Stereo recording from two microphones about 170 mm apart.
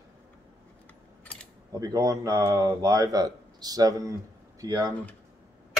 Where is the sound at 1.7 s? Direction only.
20° right (ahead or behind).